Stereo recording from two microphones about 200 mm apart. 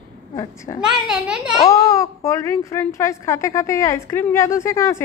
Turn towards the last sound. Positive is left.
turn(degrees=15)  # may be behind; listen again after turning